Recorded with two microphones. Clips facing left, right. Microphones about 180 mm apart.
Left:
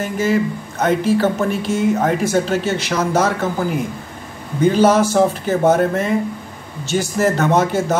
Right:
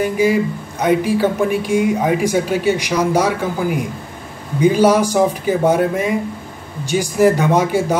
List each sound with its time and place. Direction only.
0.0 s speech: 10° right (ahead or behind)